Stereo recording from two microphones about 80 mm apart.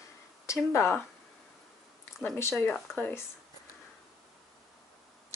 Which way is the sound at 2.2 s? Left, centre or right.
Left.